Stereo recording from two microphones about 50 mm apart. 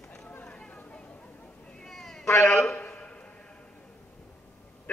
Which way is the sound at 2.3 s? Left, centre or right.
Left.